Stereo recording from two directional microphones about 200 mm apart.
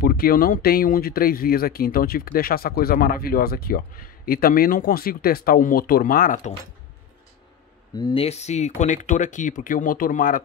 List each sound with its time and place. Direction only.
0.0 s speech: 50° left (ahead or behind)
7.9 s speech: 25° left (ahead or behind); by 10.4 s 45° left (ahead or behind)